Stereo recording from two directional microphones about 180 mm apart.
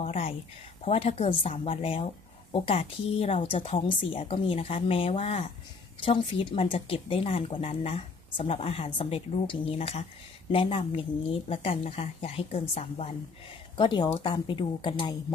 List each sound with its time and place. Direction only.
0.0 s speech: 35° left (ahead or behind)